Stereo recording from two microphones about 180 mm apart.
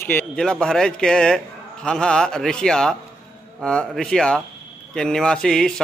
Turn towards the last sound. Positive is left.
turn(degrees=5)  # may be behind; listen again after turning